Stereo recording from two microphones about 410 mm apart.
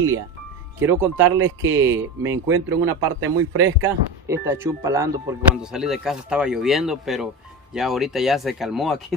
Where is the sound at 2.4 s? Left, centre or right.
Right.